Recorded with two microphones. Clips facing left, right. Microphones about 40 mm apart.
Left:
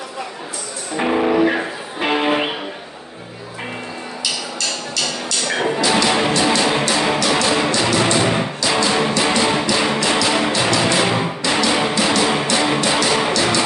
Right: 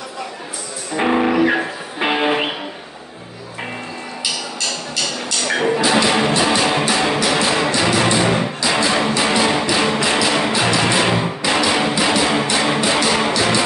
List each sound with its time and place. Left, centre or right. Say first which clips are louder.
0.9 s music: right 1 dB; centre
5.8 s music: even; centre
6.0 s music: even; centre